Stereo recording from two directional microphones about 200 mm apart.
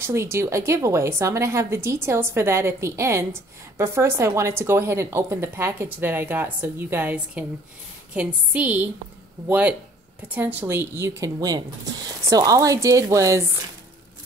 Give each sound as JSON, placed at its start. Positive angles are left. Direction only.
{"t": 0.0, "sound": "a woman's voice", "side_deg": -15}